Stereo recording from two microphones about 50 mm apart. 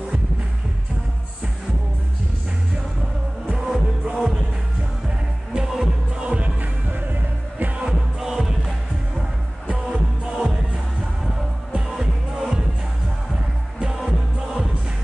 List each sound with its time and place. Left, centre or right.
3.5 s music: centre
5.5 s music: centre; by 7.7 s right
7.7 s music: centre
9.8 s music: centre
13.7 s music: centre